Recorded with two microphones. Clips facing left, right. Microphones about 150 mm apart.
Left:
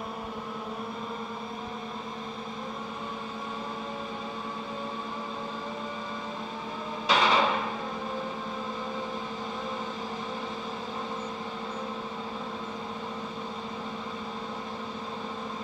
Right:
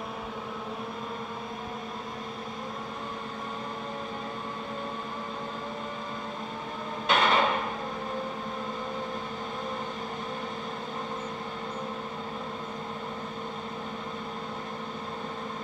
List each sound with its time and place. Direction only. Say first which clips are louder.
7.1 s hammer: even; centre (ahead or behind)